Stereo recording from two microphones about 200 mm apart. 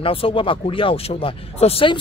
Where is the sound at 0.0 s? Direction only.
25° left (ahead or behind).